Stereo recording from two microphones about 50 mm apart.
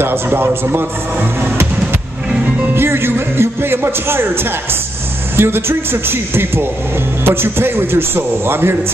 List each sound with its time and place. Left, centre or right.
0.0 s a man's voice: right
2.7 s a man's voice: right